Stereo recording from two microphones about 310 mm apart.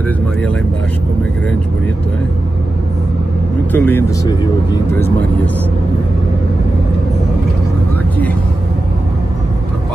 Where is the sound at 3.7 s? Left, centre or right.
Centre.